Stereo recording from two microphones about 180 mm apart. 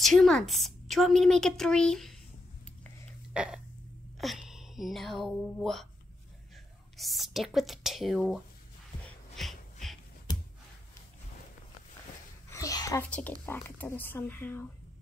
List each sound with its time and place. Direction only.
0.0 s a woman's voice: centre (ahead or behind)
3.3 s burping: 5° right (ahead or behind)
4.2 s speech: centre (ahead or behind)
9.0 s music: centre (ahead or behind)
12.4 s a sound: 20° left (ahead or behind)
13.1 s speech: 10° left (ahead or behind)